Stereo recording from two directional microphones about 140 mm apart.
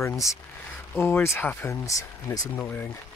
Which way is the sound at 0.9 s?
15° left (ahead or behind).